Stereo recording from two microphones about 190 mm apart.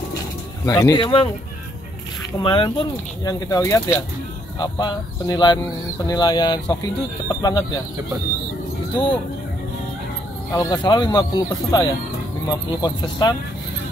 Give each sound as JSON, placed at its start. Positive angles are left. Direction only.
{"t": 0.7, "sound": "speech", "side_deg": 20}
{"t": 2.4, "sound": "speech", "side_deg": 25}
{"t": 10.5, "sound": "speech", "side_deg": 20}